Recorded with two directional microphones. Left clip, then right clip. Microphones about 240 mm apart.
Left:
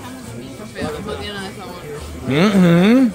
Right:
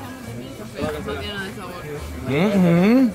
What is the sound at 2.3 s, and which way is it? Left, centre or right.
Speech, left.